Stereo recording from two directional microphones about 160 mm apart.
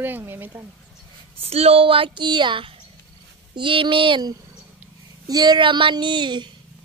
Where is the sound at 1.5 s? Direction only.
40° right (ahead or behind).